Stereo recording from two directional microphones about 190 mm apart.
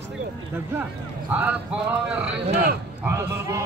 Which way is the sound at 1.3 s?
10° right (ahead or behind).